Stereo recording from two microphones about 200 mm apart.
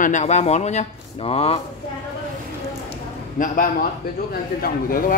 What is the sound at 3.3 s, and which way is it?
Speech, 45° left (ahead or behind).